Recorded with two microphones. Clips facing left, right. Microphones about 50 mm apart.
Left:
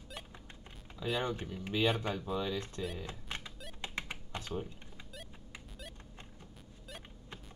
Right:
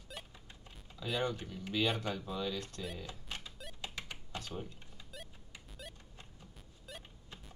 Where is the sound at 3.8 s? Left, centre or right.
Left.